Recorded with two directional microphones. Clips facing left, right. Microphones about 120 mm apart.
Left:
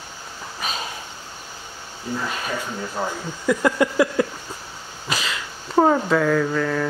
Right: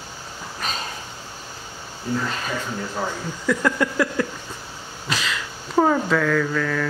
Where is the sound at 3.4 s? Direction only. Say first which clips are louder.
Left 2 dB; 15° left (ahead or behind).